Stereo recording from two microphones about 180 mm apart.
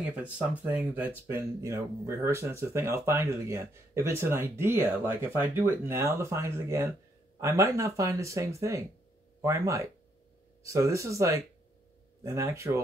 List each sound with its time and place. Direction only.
0.0 s speech: 10° right (ahead or behind)